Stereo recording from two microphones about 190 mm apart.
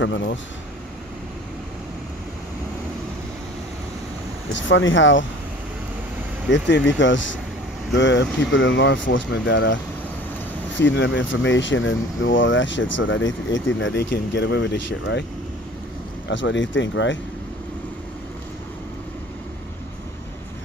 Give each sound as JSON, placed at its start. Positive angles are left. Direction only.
{"t": 0.0, "sound": "speech", "side_deg": 75}
{"t": 4.5, "sound": "speech", "side_deg": 80}
{"t": 6.5, "sound": "speech", "side_deg": 70}
{"t": 10.8, "sound": "speech", "side_deg": 75}
{"t": 16.3, "sound": "speech", "side_deg": 75}